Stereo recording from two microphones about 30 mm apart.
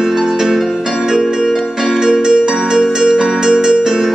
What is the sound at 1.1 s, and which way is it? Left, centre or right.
Music, right.